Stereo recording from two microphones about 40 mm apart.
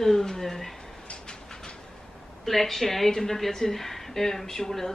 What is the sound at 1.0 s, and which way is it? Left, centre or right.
Train, left.